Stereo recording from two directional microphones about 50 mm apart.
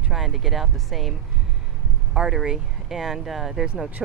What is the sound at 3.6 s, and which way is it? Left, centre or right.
Speech, right.